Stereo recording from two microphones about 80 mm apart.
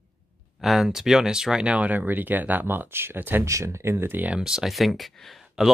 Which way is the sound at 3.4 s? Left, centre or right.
Right.